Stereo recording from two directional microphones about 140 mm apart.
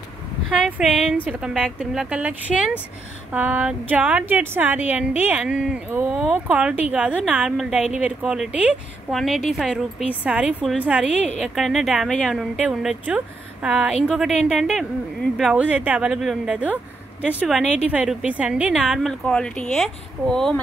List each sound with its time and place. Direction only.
0.5 s a woman's voice: 5° right (ahead or behind)
15.6 s a woman's voice: 10° right (ahead or behind)
19.2 s speech: 10° left (ahead or behind)